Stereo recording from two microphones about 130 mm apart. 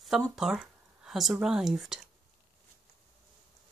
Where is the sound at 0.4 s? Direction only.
5° right (ahead or behind).